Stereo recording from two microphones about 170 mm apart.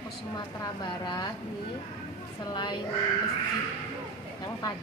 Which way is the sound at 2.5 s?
25° left (ahead or behind).